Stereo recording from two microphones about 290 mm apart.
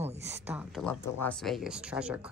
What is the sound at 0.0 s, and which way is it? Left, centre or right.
Speech, right.